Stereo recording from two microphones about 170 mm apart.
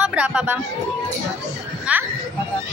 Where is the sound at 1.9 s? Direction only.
5° right (ahead or behind).